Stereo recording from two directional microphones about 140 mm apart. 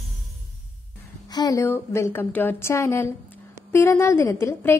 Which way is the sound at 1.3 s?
25° left (ahead or behind).